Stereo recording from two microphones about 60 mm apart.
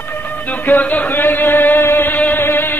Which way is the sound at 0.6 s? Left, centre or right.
Left.